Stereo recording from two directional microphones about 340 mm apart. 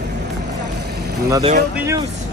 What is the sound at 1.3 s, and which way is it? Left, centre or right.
Speech, centre.